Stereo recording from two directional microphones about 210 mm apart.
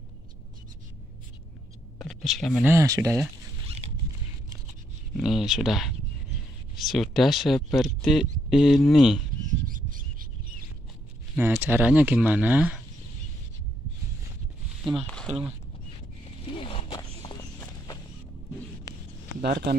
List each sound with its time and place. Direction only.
2.0 s a sound: centre (ahead or behind)
2.6 s speech: 15° right (ahead or behind)
3.8 s zipper: 30° right (ahead or behind)
5.1 s speech: centre (ahead or behind)
9.7 s a sound: 40° right (ahead or behind)
11.3 s speech: 10° right (ahead or behind)
15.0 s speech: centre (ahead or behind)
16.5 s walk: 25° left (ahead or behind)
18.9 s a sound: 15° left (ahead or behind)
19.4 s speech: 50° right (ahead or behind)